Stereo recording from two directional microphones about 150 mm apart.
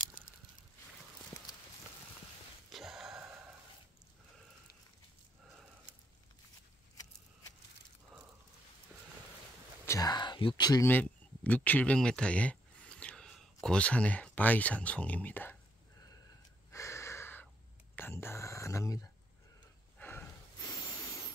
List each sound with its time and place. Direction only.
2.7 s a sound: centre (ahead or behind)
9.8 s speech: 25° left (ahead or behind)
10.9 s speech: 10° left (ahead or behind)
16.7 s gasp: 20° left (ahead or behind)
17.9 s whispering: 15° left (ahead or behind)
20.0 s snort: 15° left (ahead or behind)
20.6 s a sound: 25° left (ahead or behind)